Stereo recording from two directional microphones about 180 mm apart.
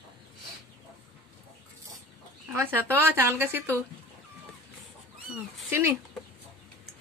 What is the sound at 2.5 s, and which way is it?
Speech, 10° right (ahead or behind).